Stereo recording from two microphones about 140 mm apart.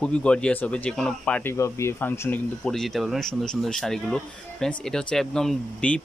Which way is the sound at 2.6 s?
5° left (ahead or behind).